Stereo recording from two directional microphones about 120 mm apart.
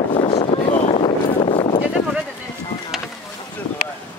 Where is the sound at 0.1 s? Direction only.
45° left (ahead or behind).